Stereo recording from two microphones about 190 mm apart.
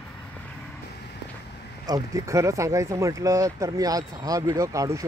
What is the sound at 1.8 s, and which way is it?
Speech, 20° right (ahead or behind).